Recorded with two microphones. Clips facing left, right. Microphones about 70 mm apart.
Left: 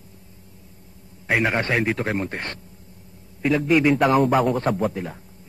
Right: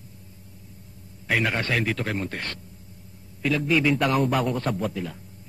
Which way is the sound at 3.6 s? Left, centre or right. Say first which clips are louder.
Left 5 dB; left.